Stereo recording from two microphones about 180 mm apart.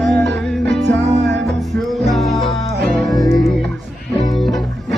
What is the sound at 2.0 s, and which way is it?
Music, centre (ahead or behind).